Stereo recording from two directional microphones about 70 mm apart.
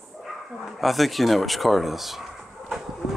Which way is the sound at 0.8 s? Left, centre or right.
Centre.